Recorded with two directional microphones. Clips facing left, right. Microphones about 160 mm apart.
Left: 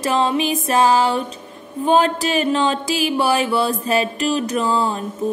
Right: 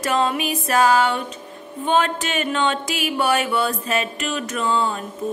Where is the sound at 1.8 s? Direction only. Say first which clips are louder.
Left 4 dB; 35° left (ahead or behind).